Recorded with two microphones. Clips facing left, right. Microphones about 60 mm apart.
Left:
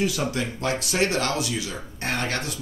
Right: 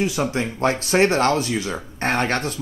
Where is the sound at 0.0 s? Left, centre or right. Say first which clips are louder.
Right 3 dB; right.